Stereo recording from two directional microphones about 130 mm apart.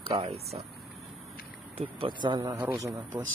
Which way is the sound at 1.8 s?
40° right (ahead or behind).